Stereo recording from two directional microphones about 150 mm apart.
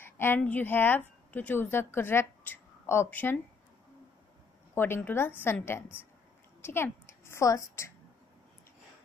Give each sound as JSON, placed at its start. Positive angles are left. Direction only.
{"t": 0.0, "sound": "a woman's voice", "side_deg": 15}
{"t": 4.7, "sound": "a woman's voice", "side_deg": 15}